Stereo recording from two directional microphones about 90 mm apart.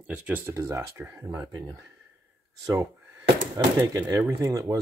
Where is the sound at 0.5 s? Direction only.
30° right (ahead or behind).